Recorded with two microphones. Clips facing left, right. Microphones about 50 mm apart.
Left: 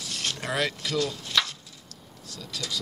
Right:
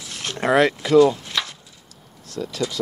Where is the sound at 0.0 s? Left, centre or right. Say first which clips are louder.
Right 7 dB; right.